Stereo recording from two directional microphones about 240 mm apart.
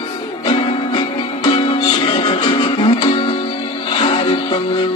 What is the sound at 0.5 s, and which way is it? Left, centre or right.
Music, centre.